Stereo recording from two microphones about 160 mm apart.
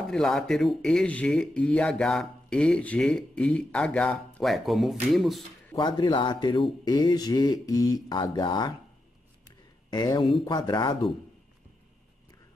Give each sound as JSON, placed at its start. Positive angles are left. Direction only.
{"t": 0.1, "sound": "speech", "side_deg": 0}
{"t": 5.8, "sound": "speech", "side_deg": 30}
{"t": 9.8, "sound": "speech", "side_deg": 25}